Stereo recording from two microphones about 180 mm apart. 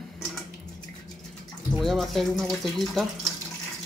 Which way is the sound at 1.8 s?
Centre (ahead or behind).